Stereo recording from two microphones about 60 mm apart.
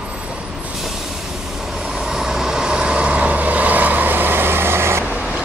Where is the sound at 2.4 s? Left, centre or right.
Centre; by 5.0 s right.